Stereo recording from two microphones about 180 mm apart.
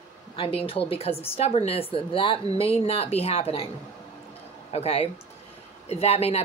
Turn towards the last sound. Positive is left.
turn(degrees=35)  # may be behind; listen again after turning